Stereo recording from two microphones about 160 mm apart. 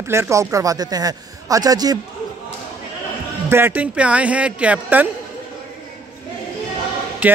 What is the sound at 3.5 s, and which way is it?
A man's voice, 10° right (ahead or behind).